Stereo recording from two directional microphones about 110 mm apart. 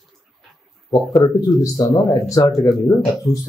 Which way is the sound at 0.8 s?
35° left (ahead or behind).